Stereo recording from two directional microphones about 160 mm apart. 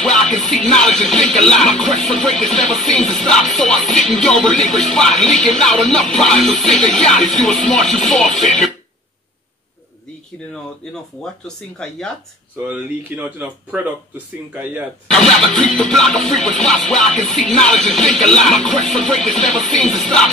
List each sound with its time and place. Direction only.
0.0 s music: 5° left (ahead or behind)
11.4 s music: 5° left (ahead or behind)
12.6 s speech: 10° right (ahead or behind)
15.0 s music: 5° left (ahead or behind)